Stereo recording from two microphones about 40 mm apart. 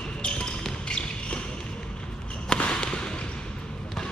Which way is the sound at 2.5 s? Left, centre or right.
Left.